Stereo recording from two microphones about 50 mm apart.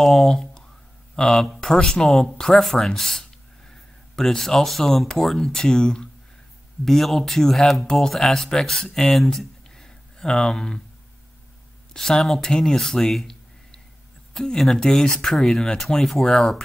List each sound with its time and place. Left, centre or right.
0.0 s a sound: centre
1.1 s speech: centre
7.8 s speech: centre
8.1 s speech: centre
11.9 s speech: centre